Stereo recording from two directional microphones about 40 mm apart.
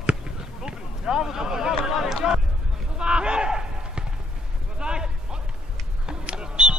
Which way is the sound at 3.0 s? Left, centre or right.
Right.